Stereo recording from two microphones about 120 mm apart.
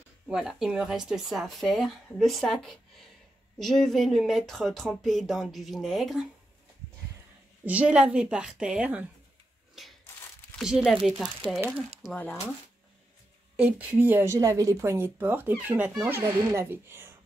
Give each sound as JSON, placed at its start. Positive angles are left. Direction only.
{"t": 0.3, "sound": "speech", "side_deg": -5}
{"t": 7.6, "sound": "a woman's voice", "side_deg": -10}
{"t": 9.8, "sound": "a sound", "side_deg": 0}
{"t": 10.5, "sound": "speech", "side_deg": -5}
{"t": 12.0, "sound": "speech", "side_deg": -35}
{"t": 13.6, "sound": "a woman's voice", "side_deg": -10}